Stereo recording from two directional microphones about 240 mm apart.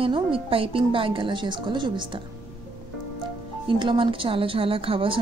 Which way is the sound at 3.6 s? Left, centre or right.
Right.